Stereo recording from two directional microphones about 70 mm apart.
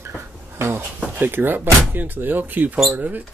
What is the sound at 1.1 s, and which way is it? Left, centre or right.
Speech, right.